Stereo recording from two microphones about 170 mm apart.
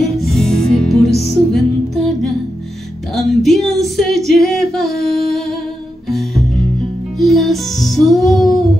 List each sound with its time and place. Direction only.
0.0 s music: centre (ahead or behind)
3.2 s female singing: centre (ahead or behind)
6.0 s music: centre (ahead or behind)